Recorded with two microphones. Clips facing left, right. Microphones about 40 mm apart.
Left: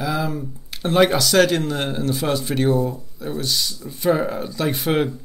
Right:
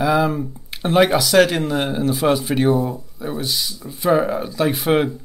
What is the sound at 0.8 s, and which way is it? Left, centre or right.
Speech, centre.